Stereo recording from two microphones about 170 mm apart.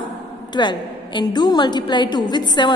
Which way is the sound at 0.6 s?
25° left (ahead or behind).